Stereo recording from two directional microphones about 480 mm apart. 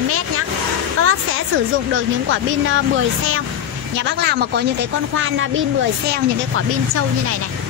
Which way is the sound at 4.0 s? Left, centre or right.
Right.